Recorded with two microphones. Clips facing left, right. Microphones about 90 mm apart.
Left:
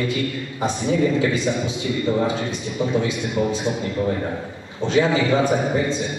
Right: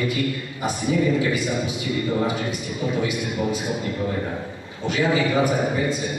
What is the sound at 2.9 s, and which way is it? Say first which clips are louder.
Speech: left 1 dB; 25° left (ahead or behind).